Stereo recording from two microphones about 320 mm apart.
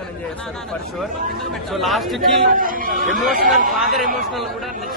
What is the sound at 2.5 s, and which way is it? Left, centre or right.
A man's voice, right.